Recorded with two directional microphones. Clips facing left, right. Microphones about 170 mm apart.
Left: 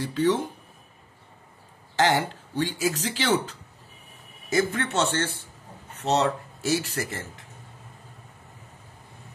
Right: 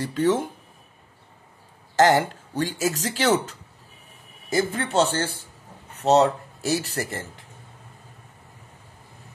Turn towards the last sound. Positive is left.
turn(degrees=-30)  # may be behind; listen again after turning